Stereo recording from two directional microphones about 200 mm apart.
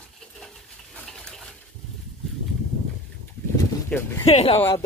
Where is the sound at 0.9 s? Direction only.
5° left (ahead or behind).